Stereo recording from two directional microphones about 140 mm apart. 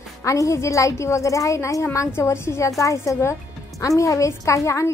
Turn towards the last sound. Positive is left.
turn(degrees=20)  # may be behind; listen again after turning